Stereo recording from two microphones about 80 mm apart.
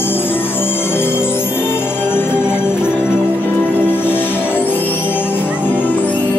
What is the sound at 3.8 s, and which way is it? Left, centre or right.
Music, left.